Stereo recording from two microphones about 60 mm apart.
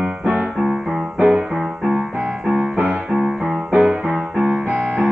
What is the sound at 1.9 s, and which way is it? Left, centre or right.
Keyboard, centre.